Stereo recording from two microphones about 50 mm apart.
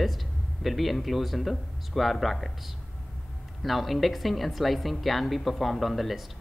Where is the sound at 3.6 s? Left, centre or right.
Centre.